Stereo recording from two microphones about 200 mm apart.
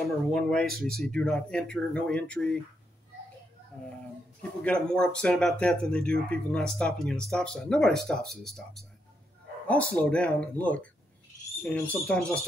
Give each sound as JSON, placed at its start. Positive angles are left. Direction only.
{"t": 0.3, "sound": "speech", "side_deg": 5}
{"t": 4.4, "sound": "speech", "side_deg": 5}
{"t": 9.9, "sound": "speech", "side_deg": 5}